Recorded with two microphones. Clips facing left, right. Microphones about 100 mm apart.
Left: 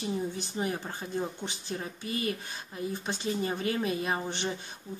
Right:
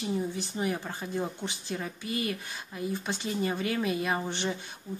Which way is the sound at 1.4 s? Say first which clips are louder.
Right 1 dB; 25° left (ahead or behind).